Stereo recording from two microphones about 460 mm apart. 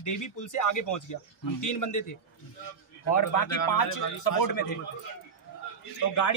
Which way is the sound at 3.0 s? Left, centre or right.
Left.